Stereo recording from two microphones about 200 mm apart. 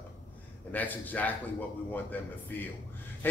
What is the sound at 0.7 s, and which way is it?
Speech, 10° left (ahead or behind).